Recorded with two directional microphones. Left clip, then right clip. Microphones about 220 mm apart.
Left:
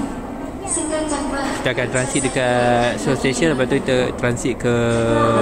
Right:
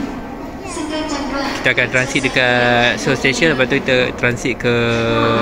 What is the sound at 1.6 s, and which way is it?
Speech, 5° left (ahead or behind).